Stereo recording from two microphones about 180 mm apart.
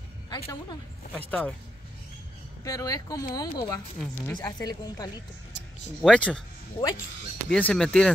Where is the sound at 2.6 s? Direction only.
20° left (ahead or behind).